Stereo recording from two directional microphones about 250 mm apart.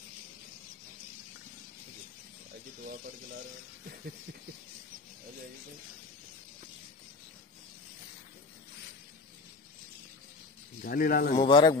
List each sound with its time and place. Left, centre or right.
10.8 s speech: left
11.3 s a man's voice: centre